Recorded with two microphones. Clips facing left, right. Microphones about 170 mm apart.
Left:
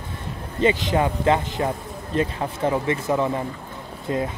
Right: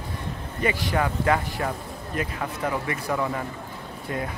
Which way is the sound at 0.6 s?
20° left (ahead or behind).